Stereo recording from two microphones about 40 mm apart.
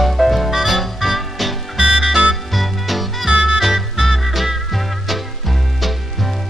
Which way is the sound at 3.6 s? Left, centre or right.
Centre.